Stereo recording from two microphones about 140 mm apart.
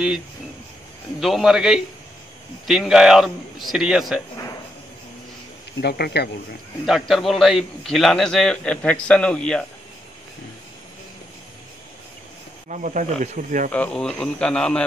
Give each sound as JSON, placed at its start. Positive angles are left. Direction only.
{"t": 1.2, "sound": "a man's voice", "side_deg": 0}
{"t": 6.9, "sound": "a man's voice", "side_deg": 0}
{"t": 12.6, "sound": "speech", "side_deg": -60}
{"t": 13.7, "sound": "a man's voice", "side_deg": 10}